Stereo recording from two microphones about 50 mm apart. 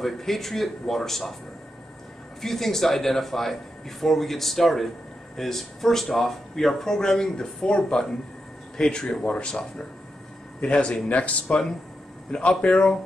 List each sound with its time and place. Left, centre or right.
0.0 s speech: centre
2.4 s speech: centre